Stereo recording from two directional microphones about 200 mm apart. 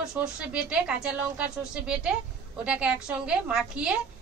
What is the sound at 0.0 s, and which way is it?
A woman's voice, 5° right (ahead or behind).